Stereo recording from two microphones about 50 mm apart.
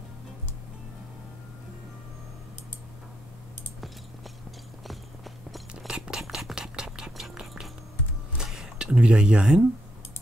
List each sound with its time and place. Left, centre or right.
4.8 s walk: centre
5.9 s a sound: centre
6.1 s stir: centre
6.5 s whispering: centre
8.4 s a sound: centre
8.7 s speech: centre